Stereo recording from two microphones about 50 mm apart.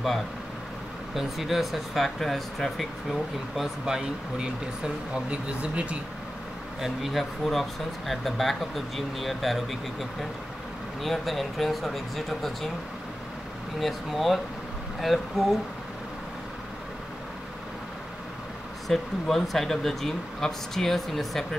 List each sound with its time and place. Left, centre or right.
1.1 s speech: centre
3.8 s speech: centre
6.8 s speech: centre
11.0 s speech: centre
13.7 s speech: centre
18.9 s speech: centre